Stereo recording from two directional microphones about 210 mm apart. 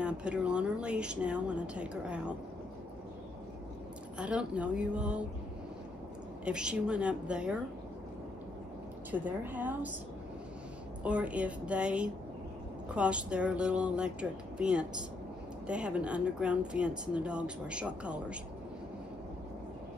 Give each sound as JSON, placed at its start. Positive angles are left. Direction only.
{"t": 0.0, "sound": "speech", "side_deg": -5}
{"t": 4.2, "sound": "speech", "side_deg": -5}
{"t": 6.4, "sound": "speech", "side_deg": -5}
{"t": 9.1, "sound": "a woman's voice", "side_deg": -10}
{"t": 11.1, "sound": "speech", "side_deg": -5}